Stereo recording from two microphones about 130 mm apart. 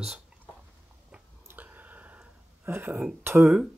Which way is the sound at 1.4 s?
15° right (ahead or behind).